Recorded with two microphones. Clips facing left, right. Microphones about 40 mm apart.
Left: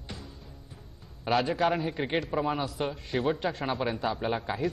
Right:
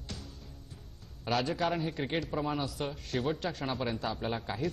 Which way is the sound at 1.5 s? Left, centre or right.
Centre.